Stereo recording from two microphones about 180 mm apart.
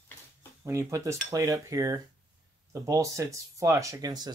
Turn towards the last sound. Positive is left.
turn(degrees=-25)  # may be behind; listen again after turning